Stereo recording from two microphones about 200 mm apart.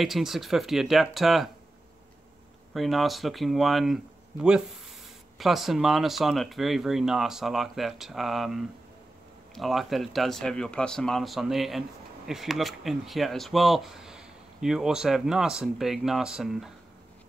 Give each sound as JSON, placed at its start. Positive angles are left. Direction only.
{"t": 0.0, "sound": "speech", "side_deg": 0}
{"t": 2.7, "sound": "speech", "side_deg": 0}